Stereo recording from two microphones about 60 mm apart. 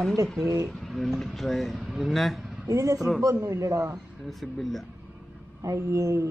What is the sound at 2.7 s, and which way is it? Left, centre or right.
Speech, right.